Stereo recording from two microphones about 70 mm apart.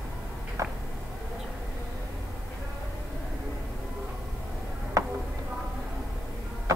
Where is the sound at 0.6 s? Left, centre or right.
Right.